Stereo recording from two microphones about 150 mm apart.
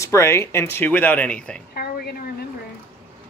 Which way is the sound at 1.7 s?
90° left.